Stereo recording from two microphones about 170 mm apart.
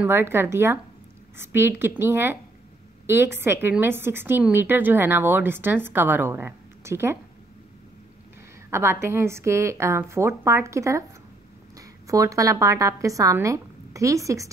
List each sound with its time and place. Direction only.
0.0 s a woman's voice: 15° right (ahead or behind)
8.6 s a woman's voice: 15° right (ahead or behind)
12.1 s speech: 20° right (ahead or behind)